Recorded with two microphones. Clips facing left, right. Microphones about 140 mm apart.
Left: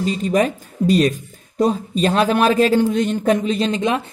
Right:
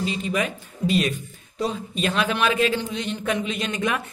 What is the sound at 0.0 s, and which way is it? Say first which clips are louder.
Speech: left 7 dB; 40° left (ahead or behind).